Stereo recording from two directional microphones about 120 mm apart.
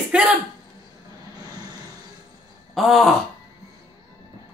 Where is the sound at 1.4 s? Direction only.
35° right (ahead or behind).